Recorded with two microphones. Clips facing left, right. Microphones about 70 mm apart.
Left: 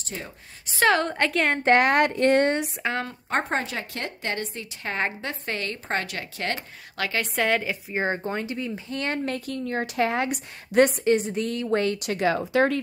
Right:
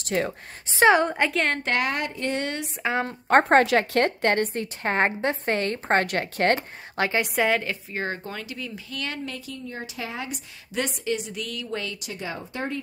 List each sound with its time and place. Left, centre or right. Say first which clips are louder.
0.0 s a woman's voice: right 11 dB; right
0.7 s a woman's voice: right 3 dB; right
1.3 s speech: left 1 dB; centre
1.6 s speech: left 7 dB; left
1.9 s speech: left 8 dB; left
2.4 s speech: left 7 dB; left
3.3 s a woman's voice: right 10 dB; right
7.0 s a woman's voice: right 3 dB; right
7.3 s speech: left 1 dB; centre
7.9 s speech: left 7 dB; left
12.1 s speech: left 10 dB; left